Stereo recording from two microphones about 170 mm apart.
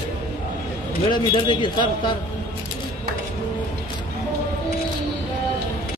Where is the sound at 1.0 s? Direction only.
30° left (ahead or behind).